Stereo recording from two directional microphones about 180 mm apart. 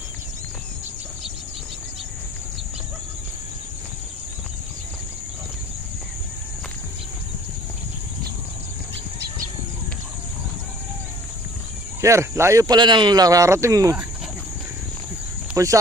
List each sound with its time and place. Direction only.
12.0 s speech: 15° right (ahead or behind)
15.5 s speech: 15° right (ahead or behind)